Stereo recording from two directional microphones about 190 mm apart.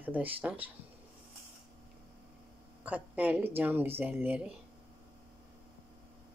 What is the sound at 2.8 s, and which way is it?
Speech, 10° right (ahead or behind).